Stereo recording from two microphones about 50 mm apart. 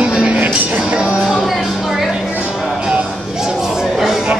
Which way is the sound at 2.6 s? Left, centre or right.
Centre.